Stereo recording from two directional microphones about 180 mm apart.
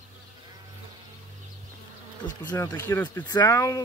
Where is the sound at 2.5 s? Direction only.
15° left (ahead or behind).